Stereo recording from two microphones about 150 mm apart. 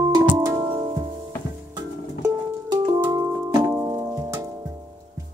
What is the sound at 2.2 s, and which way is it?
Music, 25° right (ahead or behind).